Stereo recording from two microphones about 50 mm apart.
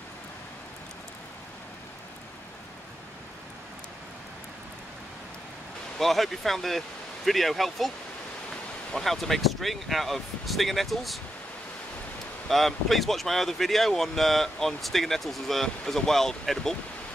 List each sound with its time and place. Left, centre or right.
5.9 s speech: centre
8.9 s speech: centre
12.4 s speech: centre